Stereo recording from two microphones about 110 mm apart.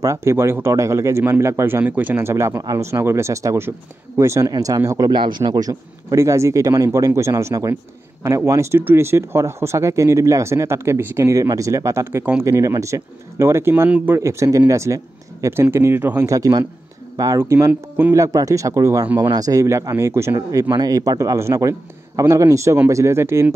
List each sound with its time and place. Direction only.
0.0 s speech: 25° right (ahead or behind)
13.8 s speech: 10° right (ahead or behind)
14.1 s speech: 25° right (ahead or behind)